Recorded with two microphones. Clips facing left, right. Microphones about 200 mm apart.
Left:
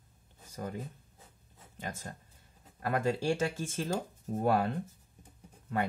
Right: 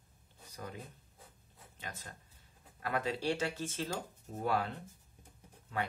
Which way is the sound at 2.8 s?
45° left (ahead or behind).